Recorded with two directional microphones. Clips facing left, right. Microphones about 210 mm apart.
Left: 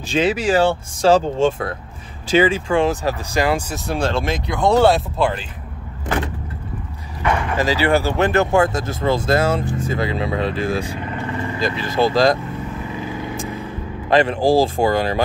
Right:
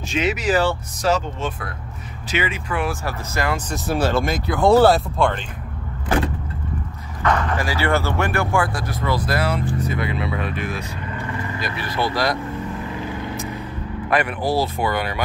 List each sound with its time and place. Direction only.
0.1 s speech: 30° left (ahead or behind); by 3.6 s 15° left (ahead or behind)
3.7 s speech: centre (ahead or behind)
7.2 s speech: 10° left (ahead or behind)
14.1 s speech: 30° left (ahead or behind)